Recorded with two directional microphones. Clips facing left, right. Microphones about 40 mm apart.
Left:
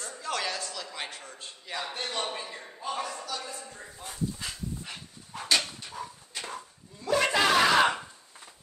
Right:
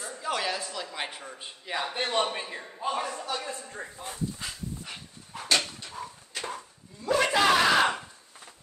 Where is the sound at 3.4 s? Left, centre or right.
Right.